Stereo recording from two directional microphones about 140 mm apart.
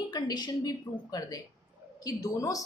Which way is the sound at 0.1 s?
30° left (ahead or behind).